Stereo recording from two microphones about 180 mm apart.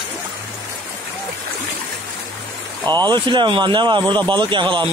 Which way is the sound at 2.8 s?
25° right (ahead or behind).